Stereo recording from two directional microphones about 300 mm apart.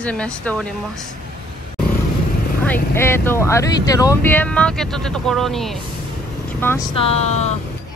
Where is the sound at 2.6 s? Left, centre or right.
Centre.